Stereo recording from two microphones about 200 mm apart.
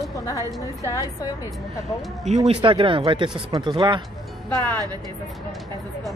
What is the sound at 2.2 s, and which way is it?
Speech, 35° right (ahead or behind).